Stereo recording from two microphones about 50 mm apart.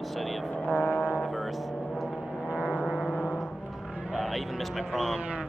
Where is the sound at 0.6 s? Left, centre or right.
Left.